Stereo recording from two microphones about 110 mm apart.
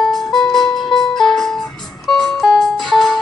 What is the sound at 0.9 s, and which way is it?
Music, 45° left (ahead or behind).